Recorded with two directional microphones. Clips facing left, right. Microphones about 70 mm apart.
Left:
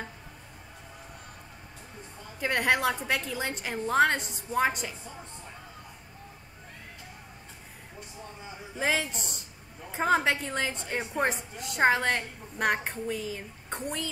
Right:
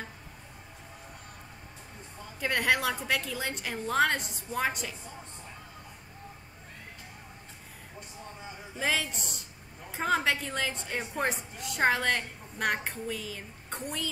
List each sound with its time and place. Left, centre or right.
2.4 s a woman's voice: centre
8.7 s a woman's voice: centre